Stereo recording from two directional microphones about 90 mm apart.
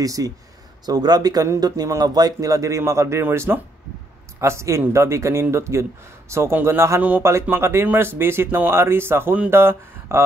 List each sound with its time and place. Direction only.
0.0 s speech: 40° right (ahead or behind)
7.0 s speech: 20° right (ahead or behind)